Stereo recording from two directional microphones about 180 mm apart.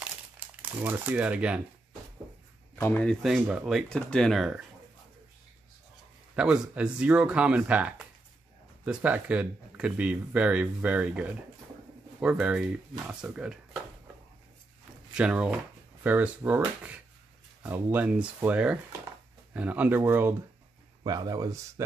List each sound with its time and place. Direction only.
0.6 s speech: 10° right (ahead or behind)
2.7 s speech: 10° left (ahead or behind)
6.3 s speech: 5° right (ahead or behind)
15.1 s speech: 5° right (ahead or behind)